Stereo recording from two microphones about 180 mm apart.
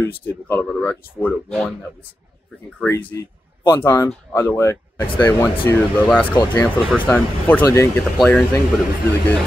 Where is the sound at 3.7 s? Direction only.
20° left (ahead or behind).